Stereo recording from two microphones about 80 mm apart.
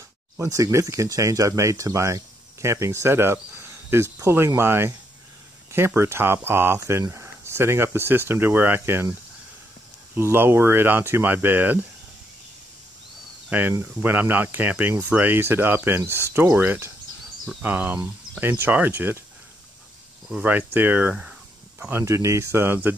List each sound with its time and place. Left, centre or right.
0.4 s speech: right
5.9 s speech: right
10.1 s speech: right
13.5 s speech: right
20.4 s speech: right
21.7 s speech: right
22.0 s speech: right